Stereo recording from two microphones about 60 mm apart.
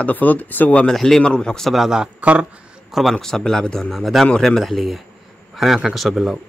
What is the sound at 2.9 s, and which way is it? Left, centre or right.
A man's voice, centre.